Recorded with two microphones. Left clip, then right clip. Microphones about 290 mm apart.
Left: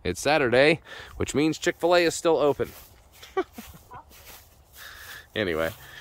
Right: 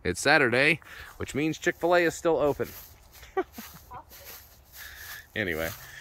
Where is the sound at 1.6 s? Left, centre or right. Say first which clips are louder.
Left 1 dB; centre.